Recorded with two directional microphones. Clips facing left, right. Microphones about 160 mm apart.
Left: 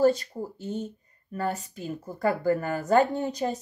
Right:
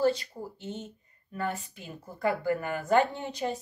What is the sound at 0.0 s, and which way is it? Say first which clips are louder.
Speech: left 5 dB; 45° left (ahead or behind).